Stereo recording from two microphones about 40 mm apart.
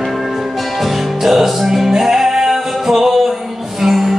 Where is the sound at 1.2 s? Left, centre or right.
Centre.